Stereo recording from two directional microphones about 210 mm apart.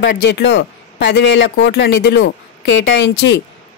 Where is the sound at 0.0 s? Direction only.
55° left (ahead or behind).